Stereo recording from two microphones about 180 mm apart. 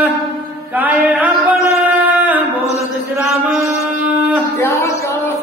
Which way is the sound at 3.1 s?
10° right (ahead or behind).